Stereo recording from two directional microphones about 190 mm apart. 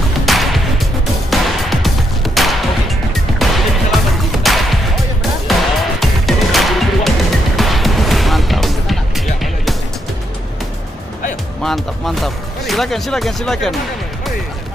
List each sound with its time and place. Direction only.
0.2 s music: centre (ahead or behind)
11.6 s music: centre (ahead or behind)